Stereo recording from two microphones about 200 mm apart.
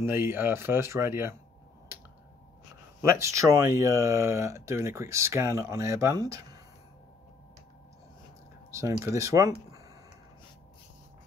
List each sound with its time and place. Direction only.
0.0 s speech: 10° right (ahead or behind)
3.0 s speech: 15° right (ahead or behind)
8.7 s speech: 15° right (ahead or behind)